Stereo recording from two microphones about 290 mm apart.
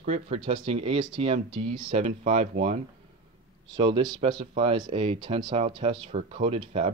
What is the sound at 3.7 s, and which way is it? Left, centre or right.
Speech, centre.